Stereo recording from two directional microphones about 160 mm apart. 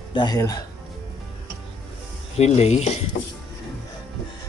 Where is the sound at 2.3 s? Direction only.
40° left (ahead or behind).